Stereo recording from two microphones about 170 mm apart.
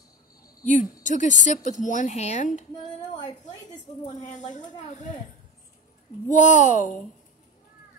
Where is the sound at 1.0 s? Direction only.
45° left (ahead or behind).